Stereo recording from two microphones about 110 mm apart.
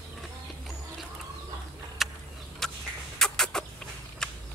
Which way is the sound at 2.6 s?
5° left (ahead or behind).